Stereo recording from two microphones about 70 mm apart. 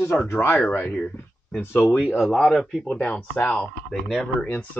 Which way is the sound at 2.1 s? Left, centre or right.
Centre.